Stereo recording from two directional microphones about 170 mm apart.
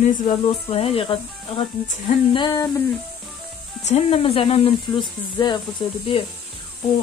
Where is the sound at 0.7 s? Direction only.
35° left (ahead or behind).